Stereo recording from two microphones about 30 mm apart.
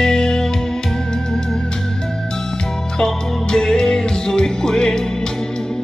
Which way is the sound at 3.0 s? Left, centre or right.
Left.